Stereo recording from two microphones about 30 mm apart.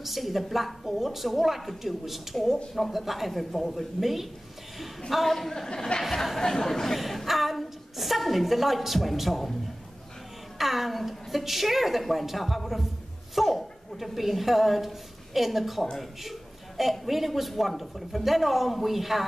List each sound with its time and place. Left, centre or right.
0.0 s a man's voice: centre
5.7 s speech: left
6.4 s speech: centre
7.0 s a woman's voice: centre
10.6 s a man's voice: centre
15.8 s speech: centre
16.3 s a man's voice: centre